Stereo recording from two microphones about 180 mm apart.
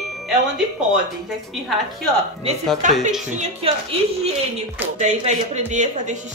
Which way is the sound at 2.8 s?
40° right (ahead or behind).